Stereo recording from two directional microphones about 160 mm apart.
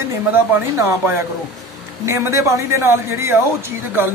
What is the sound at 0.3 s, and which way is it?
Speech, 15° right (ahead or behind).